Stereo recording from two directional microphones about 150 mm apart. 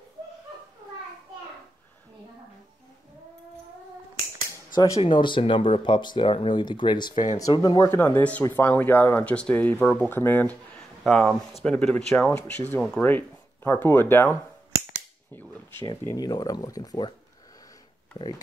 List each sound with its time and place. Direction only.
4.7 s speech: 20° left (ahead or behind)
5.0 s speech: 35° left (ahead or behind)
7.8 s speech: 15° left (ahead or behind)
16.0 s speech: 20° left (ahead or behind)